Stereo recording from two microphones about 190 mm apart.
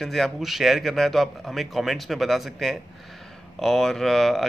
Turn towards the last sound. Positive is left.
turn(degrees=0)  # may be behind; listen again after turning